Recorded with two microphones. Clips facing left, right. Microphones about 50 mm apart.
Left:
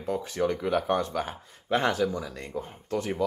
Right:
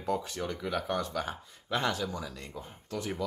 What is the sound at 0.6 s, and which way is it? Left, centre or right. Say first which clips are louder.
Speech: left 6 dB; left.